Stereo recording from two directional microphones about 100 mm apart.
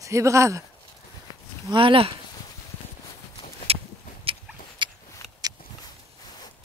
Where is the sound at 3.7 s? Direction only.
80° right.